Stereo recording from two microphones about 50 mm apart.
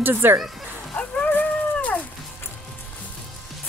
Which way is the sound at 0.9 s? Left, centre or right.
Left.